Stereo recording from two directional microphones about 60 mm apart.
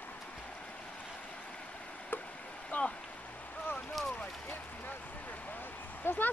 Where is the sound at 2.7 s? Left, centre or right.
Left.